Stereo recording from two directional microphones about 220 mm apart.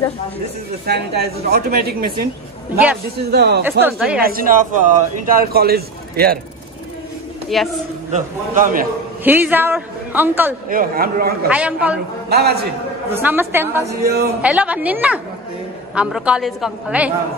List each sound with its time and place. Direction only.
0.8 s speech: 45° right (ahead or behind)
3.2 s speech: 45° right (ahead or behind)
3.8 s a woman's voice: 5° right (ahead or behind)
4.2 s speech: 40° right (ahead or behind)
7.4 s a woman's voice: centre (ahead or behind)
8.1 s speech: 35° right (ahead or behind)
9.2 s a woman's voice: 10° right (ahead or behind)
10.7 s speech: 40° right (ahead or behind)
11.4 s a woman's voice: 5° right (ahead or behind)
12.3 s a man's voice: 45° right (ahead or behind)
13.1 s a woman's voice: 10° right (ahead or behind)